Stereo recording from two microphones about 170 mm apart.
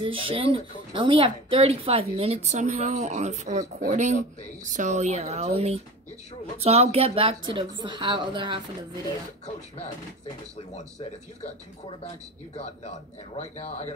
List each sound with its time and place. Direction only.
0.0 s a woman's voice: 30° right (ahead or behind)
13.4 s speech: 40° left (ahead or behind)